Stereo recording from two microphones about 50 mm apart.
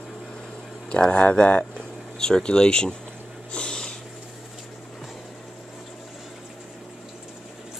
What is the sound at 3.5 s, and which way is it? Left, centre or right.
Snort, centre.